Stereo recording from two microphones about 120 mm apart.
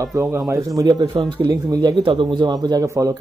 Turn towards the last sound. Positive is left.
turn(degrees=-25)  # may be behind; listen again after turning